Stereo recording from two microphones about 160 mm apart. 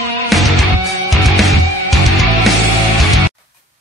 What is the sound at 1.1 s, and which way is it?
Music, centre (ahead or behind).